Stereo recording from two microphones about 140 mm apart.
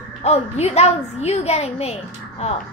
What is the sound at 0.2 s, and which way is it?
A woman's voice, 50° left (ahead or behind).